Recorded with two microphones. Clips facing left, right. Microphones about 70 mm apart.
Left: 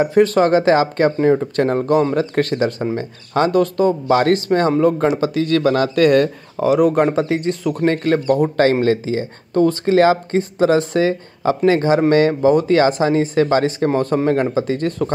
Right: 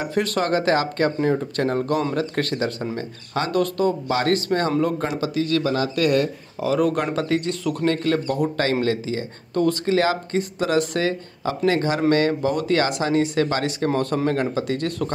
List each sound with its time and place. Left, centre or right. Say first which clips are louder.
0.0 s speech: left 9 dB; left
6.7 s a man's voice: left 6 dB; centre